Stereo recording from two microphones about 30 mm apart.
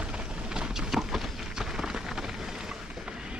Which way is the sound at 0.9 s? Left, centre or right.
Centre.